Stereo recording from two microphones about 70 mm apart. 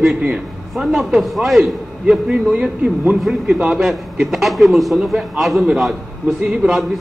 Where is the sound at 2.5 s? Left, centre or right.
Centre.